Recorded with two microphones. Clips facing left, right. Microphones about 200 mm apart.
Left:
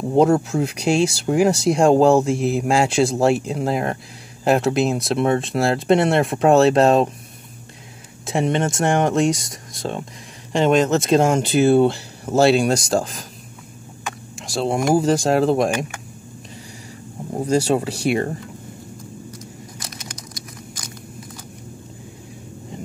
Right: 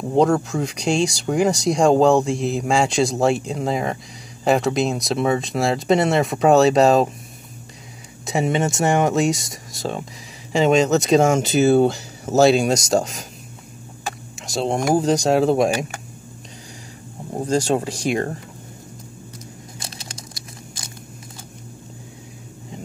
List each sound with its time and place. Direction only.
0.1 s speech: 5° left (ahead or behind)
8.3 s speech: 5° right (ahead or behind)
14.4 s speech: centre (ahead or behind)
17.5 s speech: 5° left (ahead or behind)
19.8 s a sound: 25° right (ahead or behind)